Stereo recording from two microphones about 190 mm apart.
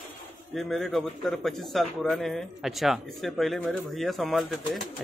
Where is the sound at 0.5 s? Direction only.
Centre (ahead or behind).